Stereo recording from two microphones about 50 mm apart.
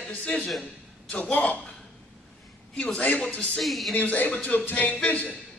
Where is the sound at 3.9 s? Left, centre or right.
Left.